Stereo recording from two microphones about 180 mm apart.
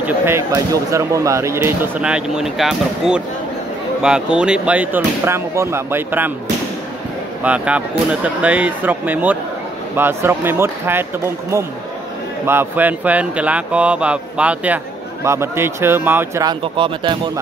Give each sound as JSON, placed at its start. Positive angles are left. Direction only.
{"t": 0.0, "sound": "speech", "side_deg": -15}
{"t": 7.4, "sound": "speech", "side_deg": -5}
{"t": 12.4, "sound": "speech", "side_deg": -10}
{"t": 16.4, "sound": "speech", "side_deg": -30}